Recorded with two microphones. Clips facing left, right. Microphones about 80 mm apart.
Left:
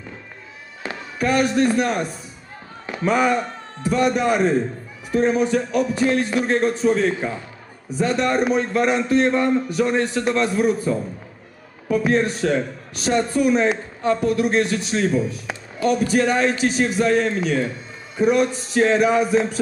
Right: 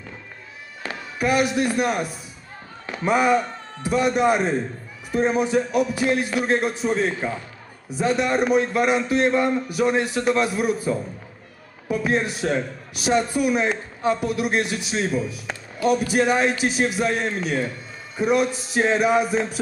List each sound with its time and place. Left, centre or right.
0.8 s music: centre
1.2 s a man's voice: centre
3.8 s music: centre
5.5 s a man's voice: centre
12.1 s a man's voice: centre
15.5 s a sound: centre
15.8 s a man's voice: centre
18.9 s music: centre